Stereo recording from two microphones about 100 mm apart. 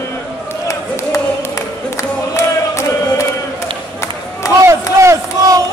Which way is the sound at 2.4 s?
30° left (ahead or behind).